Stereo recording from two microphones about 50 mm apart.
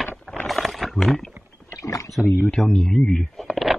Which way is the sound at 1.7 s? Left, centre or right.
Left.